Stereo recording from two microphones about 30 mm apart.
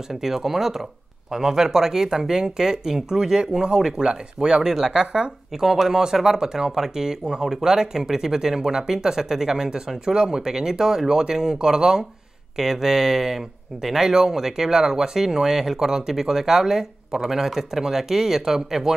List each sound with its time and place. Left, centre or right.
0.1 s speech: centre
4.8 s speech: centre